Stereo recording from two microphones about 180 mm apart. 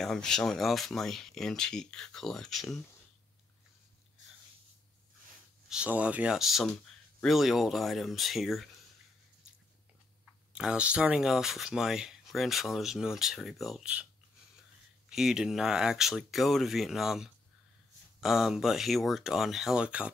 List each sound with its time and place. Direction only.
0.0 s speech: 5° left (ahead or behind)
5.7 s speech: 5° right (ahead or behind)
10.5 s speech: 5° right (ahead or behind)
15.0 s speech: 5° right (ahead or behind)